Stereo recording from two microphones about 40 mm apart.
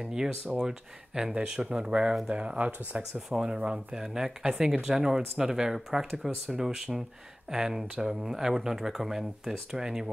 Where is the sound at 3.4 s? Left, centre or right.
Right.